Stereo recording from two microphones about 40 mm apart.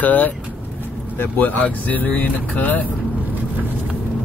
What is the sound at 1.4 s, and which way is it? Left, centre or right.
Speech, left.